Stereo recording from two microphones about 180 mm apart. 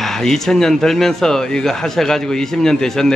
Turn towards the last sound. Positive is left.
turn(degrees=5)  # may be behind; listen again after turning